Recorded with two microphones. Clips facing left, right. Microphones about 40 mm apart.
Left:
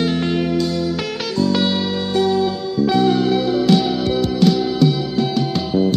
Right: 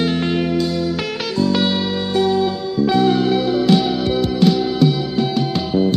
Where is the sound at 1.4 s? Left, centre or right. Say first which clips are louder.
Even; right.